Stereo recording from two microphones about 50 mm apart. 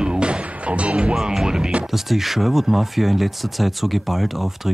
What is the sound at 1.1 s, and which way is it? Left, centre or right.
Music, centre.